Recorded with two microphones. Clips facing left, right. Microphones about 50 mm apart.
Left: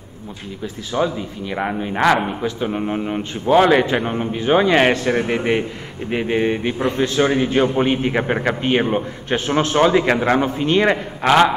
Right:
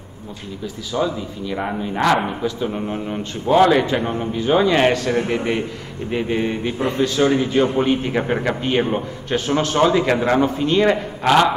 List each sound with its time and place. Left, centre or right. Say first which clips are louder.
0.9 s a man's voice: left 1 dB; left